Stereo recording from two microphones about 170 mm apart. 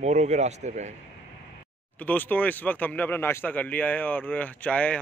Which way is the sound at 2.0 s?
10° left (ahead or behind).